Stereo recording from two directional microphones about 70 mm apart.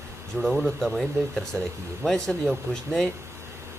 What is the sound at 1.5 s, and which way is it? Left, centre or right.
Speech, right.